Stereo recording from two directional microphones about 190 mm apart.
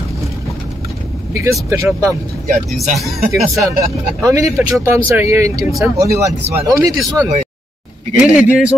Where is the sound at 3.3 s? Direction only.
15° right (ahead or behind).